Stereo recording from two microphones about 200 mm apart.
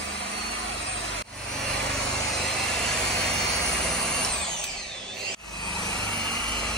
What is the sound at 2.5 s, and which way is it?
Vehicle, centre (ahead or behind).